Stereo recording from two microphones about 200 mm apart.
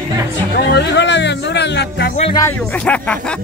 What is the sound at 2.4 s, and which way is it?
Speech, 5° left (ahead or behind).